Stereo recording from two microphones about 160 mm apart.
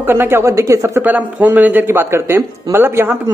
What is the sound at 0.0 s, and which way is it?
A man's voice, 15° right (ahead or behind).